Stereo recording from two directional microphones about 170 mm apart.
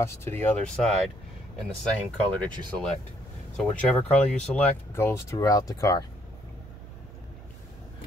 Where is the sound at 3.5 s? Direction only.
5° left (ahead or behind); by 6.0 s 20° left (ahead or behind).